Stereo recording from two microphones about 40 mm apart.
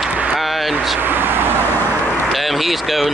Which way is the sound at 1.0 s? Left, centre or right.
Right.